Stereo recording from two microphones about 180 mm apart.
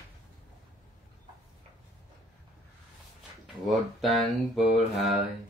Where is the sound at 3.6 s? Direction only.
Centre (ahead or behind).